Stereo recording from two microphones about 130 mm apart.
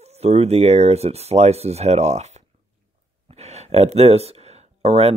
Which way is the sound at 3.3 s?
55° right (ahead or behind).